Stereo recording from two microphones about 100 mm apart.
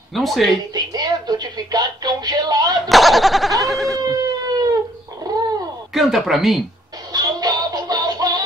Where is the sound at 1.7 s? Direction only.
45° right (ahead or behind).